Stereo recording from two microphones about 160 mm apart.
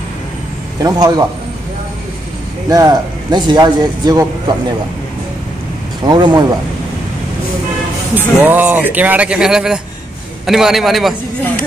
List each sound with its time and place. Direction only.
0.8 s a man's voice: 25° right (ahead or behind)
2.7 s a man's voice: 25° right (ahead or behind)
6.0 s a man's voice: 30° right (ahead or behind)
8.1 s a man's voice: 10° right (ahead or behind)